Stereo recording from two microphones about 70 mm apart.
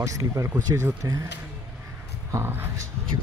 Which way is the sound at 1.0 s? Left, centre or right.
Right.